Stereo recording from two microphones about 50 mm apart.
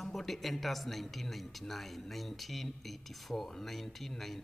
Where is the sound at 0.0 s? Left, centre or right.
Centre.